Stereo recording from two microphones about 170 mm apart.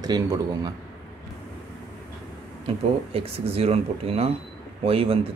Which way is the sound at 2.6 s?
35° right (ahead or behind).